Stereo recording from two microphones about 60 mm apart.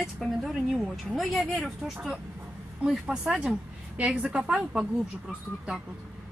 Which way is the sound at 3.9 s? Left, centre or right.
Right.